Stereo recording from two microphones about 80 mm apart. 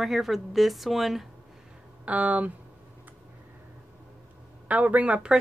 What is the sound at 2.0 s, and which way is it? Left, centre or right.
Speech, centre.